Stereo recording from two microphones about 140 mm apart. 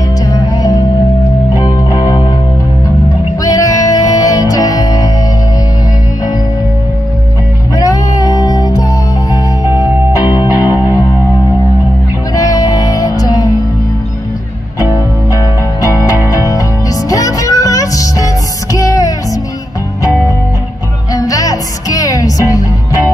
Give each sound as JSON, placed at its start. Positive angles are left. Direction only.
{"t": 0.3, "sound": "music", "side_deg": 25}
{"t": 3.4, "sound": "music", "side_deg": 25}
{"t": 7.7, "sound": "music", "side_deg": 25}
{"t": 12.4, "sound": "music", "side_deg": 25}
{"t": 15.3, "sound": "music", "side_deg": 25}
{"t": 21.1, "sound": "music", "side_deg": 25}